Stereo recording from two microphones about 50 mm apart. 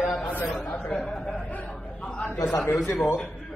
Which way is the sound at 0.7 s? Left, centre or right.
Left.